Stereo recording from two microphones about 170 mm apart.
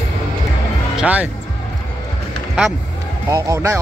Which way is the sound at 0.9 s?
10° right (ahead or behind).